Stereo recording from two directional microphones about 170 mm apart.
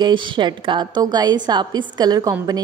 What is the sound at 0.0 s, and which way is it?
A woman's voice, 25° right (ahead or behind).